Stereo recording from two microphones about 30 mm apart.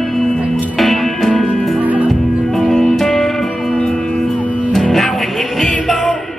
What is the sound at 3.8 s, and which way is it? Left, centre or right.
Music, left.